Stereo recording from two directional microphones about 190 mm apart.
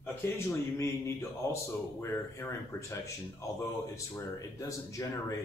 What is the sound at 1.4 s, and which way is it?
Speech, 15° left (ahead or behind).